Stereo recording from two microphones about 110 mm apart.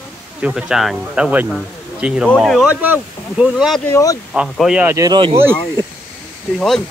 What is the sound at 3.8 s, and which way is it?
Speech, 25° left (ahead or behind).